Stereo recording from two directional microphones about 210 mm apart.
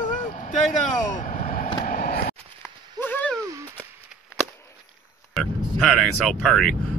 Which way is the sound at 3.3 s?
15° right (ahead or behind).